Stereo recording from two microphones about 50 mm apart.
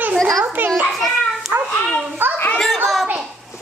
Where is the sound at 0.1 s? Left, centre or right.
Centre.